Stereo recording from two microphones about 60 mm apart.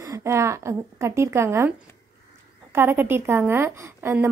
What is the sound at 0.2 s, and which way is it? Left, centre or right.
A woman's voice, right.